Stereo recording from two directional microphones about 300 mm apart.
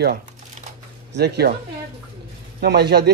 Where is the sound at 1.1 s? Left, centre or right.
Right.